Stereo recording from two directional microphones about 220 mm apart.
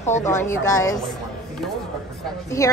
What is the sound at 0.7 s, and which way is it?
Speech, 15° left (ahead or behind).